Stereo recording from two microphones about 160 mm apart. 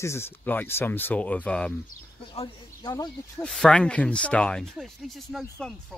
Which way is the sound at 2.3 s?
30° left (ahead or behind).